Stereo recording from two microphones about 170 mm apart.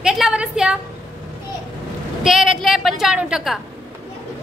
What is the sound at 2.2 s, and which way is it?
A woman's voice, 5° right (ahead or behind).